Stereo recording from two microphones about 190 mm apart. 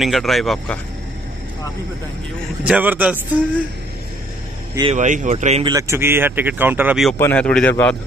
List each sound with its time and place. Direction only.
0.0 s speech: centre (ahead or behind)
2.6 s speech: 10° right (ahead or behind)
4.9 s speech: 40° right (ahead or behind)
5.7 s speech: 15° right (ahead or behind)
7.2 s a man's voice: 10° left (ahead or behind)